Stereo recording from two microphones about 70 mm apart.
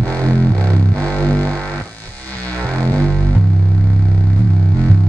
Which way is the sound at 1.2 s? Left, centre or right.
Centre.